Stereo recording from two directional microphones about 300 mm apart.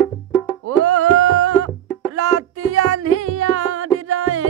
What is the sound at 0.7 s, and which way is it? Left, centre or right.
Music, right.